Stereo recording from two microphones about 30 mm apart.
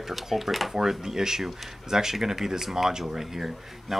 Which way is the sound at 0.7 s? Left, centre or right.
Centre.